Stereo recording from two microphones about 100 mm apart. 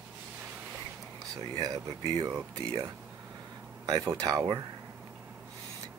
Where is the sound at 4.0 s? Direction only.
35° right (ahead or behind).